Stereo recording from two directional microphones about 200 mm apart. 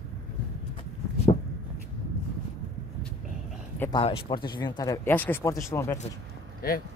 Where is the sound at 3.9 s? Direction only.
25° left (ahead or behind).